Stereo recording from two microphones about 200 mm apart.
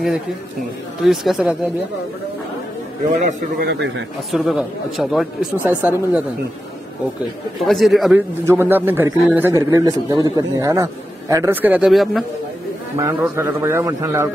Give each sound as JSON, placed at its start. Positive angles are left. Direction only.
{"t": 1.0, "sound": "speech", "side_deg": 0}
{"t": 3.3, "sound": "a man's voice", "side_deg": -40}
{"t": 3.6, "sound": "a man's voice", "side_deg": -60}
{"t": 4.3, "sound": "speech", "side_deg": 0}
{"t": 7.6, "sound": "speech", "side_deg": 0}
{"t": 8.5, "sound": "a man's voice", "side_deg": -10}
{"t": 13.4, "sound": "a man's voice", "side_deg": -10}